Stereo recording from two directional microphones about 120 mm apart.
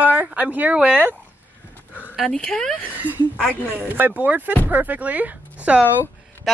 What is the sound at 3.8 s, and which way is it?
Speech, 15° right (ahead or behind).